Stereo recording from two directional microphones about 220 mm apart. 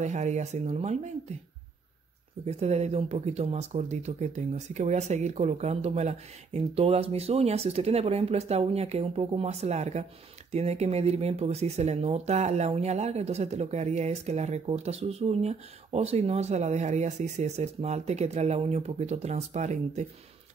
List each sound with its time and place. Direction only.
0.0 s speech: 30° right (ahead or behind)
2.4 s speech: 30° right (ahead or behind)